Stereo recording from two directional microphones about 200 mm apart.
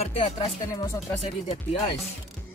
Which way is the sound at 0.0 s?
25° left (ahead or behind).